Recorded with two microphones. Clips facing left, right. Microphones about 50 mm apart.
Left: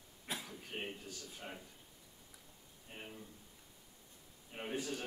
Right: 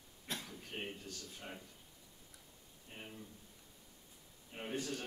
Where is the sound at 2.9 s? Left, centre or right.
Centre.